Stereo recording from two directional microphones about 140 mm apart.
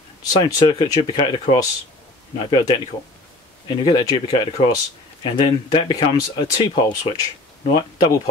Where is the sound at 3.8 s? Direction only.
30° left (ahead or behind).